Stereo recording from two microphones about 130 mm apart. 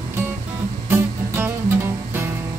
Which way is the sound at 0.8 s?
20° right (ahead or behind).